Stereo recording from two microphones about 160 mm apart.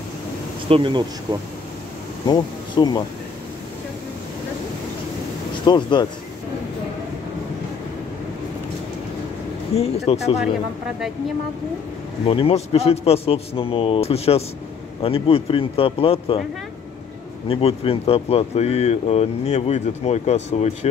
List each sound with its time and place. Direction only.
0.7 s speech: 30° right (ahead or behind)
2.2 s speech: 25° left (ahead or behind)
5.7 s speech: 30° left (ahead or behind)
9.8 s speech: 40° left (ahead or behind)
12.3 s speech: 35° left (ahead or behind)
17.5 s speech: 40° left (ahead or behind)